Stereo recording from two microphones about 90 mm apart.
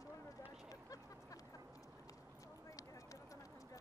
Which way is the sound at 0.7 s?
40° left (ahead or behind).